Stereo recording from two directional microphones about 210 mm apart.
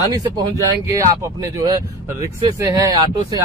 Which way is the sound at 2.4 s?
15° right (ahead or behind).